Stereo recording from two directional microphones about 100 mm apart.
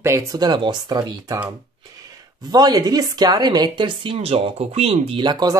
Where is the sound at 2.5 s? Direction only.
45° right (ahead or behind); by 5.3 s 70° right (ahead or behind).